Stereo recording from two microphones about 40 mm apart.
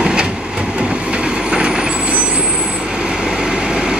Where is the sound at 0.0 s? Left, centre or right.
Right.